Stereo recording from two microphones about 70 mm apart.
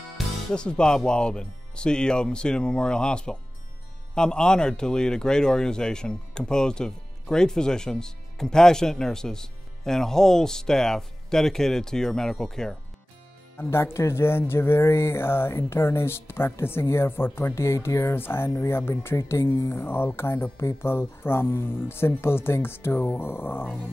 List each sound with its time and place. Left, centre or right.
0.5 s a man's voice: centre
13.6 s speech: left